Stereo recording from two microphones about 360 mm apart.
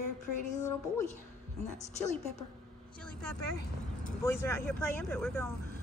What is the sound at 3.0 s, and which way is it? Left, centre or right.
A woman's voice, centre.